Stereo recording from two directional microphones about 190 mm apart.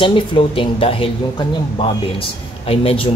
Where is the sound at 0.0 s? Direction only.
25° left (ahead or behind).